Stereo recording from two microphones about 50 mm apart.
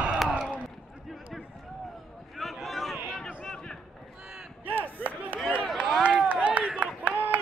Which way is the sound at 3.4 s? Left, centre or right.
Centre.